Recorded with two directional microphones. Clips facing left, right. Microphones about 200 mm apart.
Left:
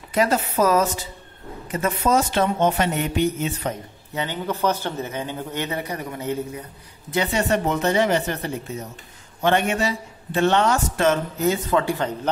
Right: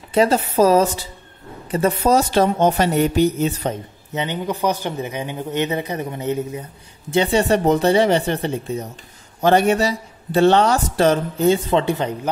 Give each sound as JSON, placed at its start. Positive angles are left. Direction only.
{"t": 0.1, "sound": "a man's voice", "side_deg": -30}
{"t": 4.1, "sound": "a man's voice", "side_deg": -20}